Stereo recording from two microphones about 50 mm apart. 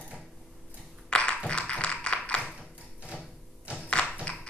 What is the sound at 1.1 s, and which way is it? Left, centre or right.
Tap, left.